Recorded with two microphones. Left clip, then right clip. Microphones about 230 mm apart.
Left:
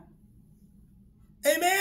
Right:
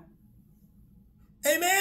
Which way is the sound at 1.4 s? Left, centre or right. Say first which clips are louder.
Left 1 dB; centre.